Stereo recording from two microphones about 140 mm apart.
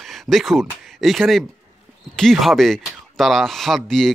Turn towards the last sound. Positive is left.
turn(degrees=0)  # may be behind; listen again after turning